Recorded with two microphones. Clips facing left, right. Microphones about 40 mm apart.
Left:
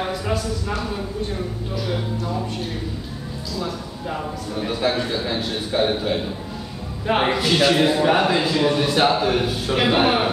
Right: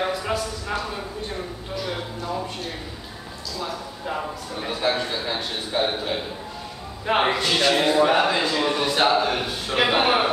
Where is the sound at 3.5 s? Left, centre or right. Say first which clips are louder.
Left 2 dB; centre.